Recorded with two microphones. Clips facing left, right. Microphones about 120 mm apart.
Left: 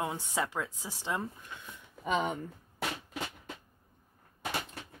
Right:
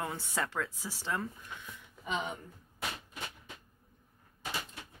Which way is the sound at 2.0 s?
50° left (ahead or behind).